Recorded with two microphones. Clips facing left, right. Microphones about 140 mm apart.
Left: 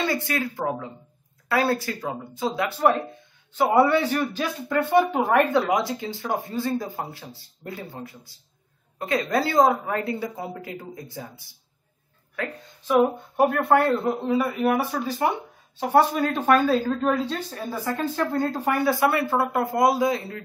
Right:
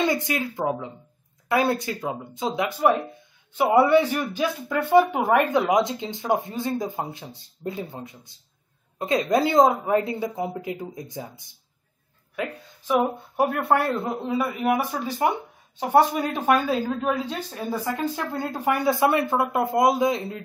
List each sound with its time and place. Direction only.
0.0 s a man's voice: 20° right (ahead or behind)